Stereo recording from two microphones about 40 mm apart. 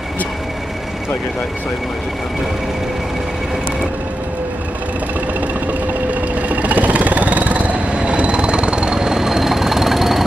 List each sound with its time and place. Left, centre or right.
6.5 s vehicle: right; by 10.2 s centre